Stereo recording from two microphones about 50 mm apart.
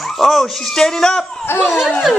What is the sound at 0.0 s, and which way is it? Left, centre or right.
Speech, centre.